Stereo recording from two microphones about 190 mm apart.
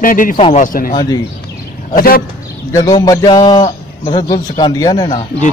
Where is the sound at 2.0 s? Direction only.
50° left (ahead or behind).